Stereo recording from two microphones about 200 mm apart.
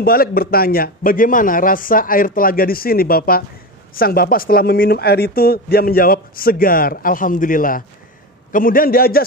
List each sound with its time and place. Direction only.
0.0 s speech: 50° left (ahead or behind)